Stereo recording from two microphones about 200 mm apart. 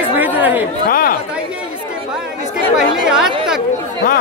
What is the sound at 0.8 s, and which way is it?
Speech, 45° left (ahead or behind).